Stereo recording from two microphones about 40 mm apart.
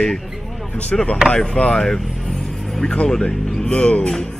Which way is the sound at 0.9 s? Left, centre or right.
Centre.